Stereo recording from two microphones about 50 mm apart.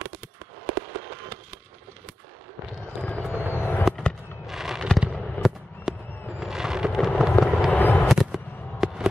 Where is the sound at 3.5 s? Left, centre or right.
Left.